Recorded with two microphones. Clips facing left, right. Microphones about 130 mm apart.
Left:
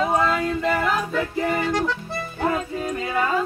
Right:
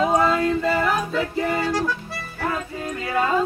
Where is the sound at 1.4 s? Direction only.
15° left (ahead or behind).